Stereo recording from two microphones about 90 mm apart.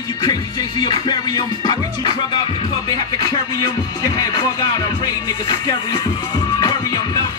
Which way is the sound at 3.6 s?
50° left (ahead or behind).